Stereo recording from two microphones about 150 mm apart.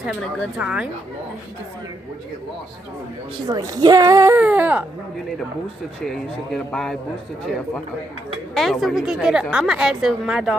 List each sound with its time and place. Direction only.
0.6 s speech: 5° right (ahead or behind)
3.4 s speech: 25° right (ahead or behind)
4.4 s speech: 10° right (ahead or behind)
6.0 s a woman's voice: centre (ahead or behind)
8.5 s a woman's voice: centre (ahead or behind)